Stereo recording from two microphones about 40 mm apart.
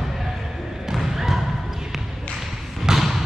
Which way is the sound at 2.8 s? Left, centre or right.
Centre.